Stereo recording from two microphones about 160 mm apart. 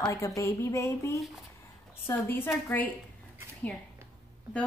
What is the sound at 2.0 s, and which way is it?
Speech, 15° left (ahead or behind).